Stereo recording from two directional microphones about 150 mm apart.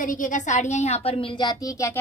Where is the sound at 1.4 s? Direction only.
30° left (ahead or behind).